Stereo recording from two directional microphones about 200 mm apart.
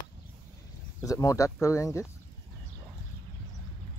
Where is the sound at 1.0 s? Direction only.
15° left (ahead or behind).